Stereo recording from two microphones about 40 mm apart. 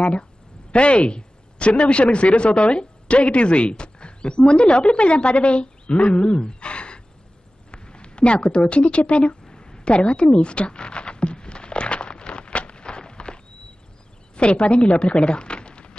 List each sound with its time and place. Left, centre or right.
0.0 s a woman's voice: left
9.4 s a sound: centre
14.3 s speech: left